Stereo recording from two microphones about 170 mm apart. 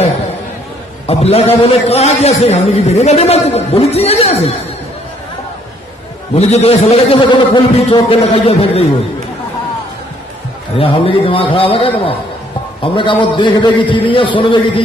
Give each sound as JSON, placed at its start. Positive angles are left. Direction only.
{"t": 1.0, "sound": "a man's voice", "side_deg": 40}
{"t": 6.3, "sound": "a man's voice", "side_deg": 40}
{"t": 10.8, "sound": "a man's voice", "side_deg": 35}